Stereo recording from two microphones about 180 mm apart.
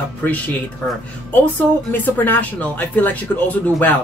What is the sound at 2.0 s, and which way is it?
Speech, 10° left (ahead or behind).